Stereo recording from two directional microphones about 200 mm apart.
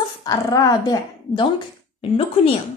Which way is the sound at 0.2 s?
20° left (ahead or behind).